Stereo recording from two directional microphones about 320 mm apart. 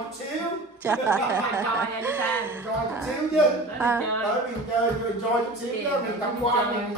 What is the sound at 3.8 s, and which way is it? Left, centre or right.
Music, centre.